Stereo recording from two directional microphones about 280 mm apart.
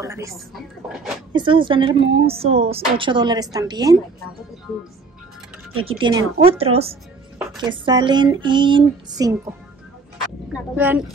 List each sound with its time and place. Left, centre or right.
0.0 s speech: centre
1.3 s a woman's voice: centre
5.8 s a woman's voice: centre
10.8 s a woman's voice: centre